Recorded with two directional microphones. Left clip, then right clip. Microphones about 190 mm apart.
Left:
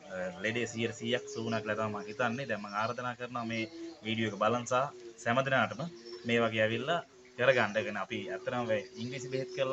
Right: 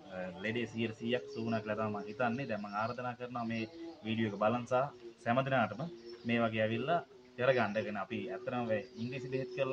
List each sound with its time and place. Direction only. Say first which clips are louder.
0.4 s speech: left 3 dB; 5° left (ahead or behind)